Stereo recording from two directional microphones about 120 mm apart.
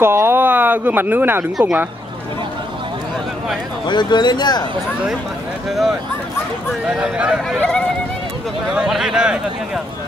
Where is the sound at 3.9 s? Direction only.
40° left (ahead or behind).